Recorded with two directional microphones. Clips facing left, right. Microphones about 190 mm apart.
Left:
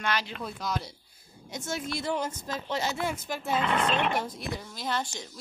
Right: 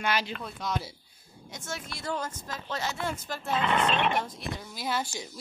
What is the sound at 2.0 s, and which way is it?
Speech, 20° left (ahead or behind).